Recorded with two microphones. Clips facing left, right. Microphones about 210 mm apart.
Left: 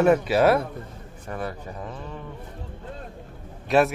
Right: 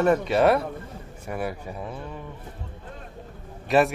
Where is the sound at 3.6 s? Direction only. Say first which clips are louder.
Even; centre (ahead or behind).